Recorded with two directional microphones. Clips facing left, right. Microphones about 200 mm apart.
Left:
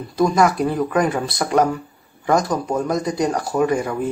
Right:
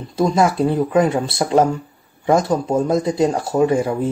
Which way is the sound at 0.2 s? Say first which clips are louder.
Right 1 dB; 25° right (ahead or behind).